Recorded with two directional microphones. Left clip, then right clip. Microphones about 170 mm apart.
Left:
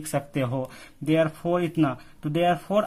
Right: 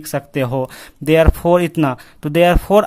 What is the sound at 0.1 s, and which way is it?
Speech, 30° right (ahead or behind).